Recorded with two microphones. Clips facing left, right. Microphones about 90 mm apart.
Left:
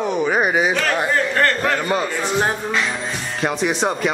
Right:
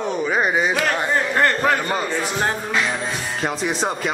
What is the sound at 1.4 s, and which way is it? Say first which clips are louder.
Speech: right 3 dB; 15° right (ahead or behind).